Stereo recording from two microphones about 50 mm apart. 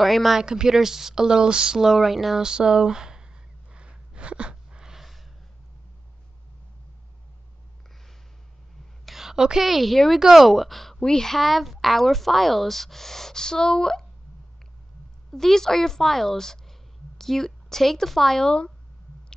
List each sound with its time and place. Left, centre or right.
0.0 s a woman's voice: centre
0.4 s speech: centre
3.7 s a sound: right
4.9 s snort: centre
9.0 s a sound: centre
9.7 s a woman's voice: centre
15.3 s a woman's voice: centre